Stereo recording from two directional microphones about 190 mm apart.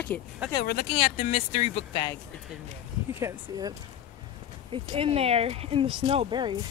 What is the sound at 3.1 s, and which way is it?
Speech, 15° right (ahead or behind).